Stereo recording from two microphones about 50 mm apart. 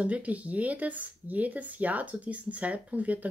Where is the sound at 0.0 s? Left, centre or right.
Right.